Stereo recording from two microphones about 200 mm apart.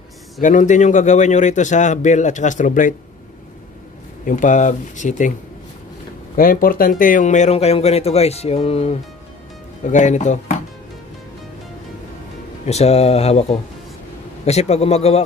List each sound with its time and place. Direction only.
0.4 s speech: 40° left (ahead or behind)
4.2 s speech: 40° left (ahead or behind)
6.3 s speech: 45° left (ahead or behind)
12.6 s speech: 30° left (ahead or behind)